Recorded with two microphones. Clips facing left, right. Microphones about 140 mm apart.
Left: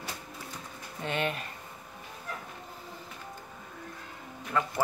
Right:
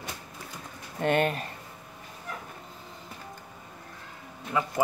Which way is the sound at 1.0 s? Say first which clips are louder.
Right 7 dB; 50° right (ahead or behind).